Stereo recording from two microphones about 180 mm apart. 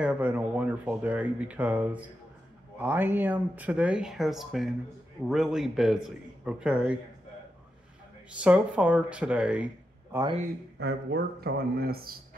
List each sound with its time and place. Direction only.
0.0 s speech: 10° right (ahead or behind)
8.3 s speech: 5° right (ahead or behind)
10.8 s speech: 65° right (ahead or behind)